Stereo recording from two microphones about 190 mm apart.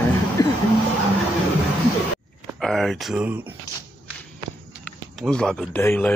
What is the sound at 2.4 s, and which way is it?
Speech, centre (ahead or behind).